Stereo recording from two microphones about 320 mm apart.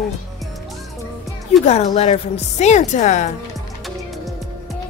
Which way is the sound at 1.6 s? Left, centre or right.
Left.